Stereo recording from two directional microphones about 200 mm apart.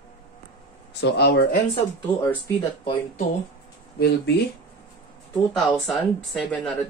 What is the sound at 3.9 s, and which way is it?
Speech, 55° left (ahead or behind).